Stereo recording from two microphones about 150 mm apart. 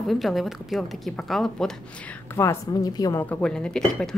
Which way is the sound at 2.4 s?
20° left (ahead or behind).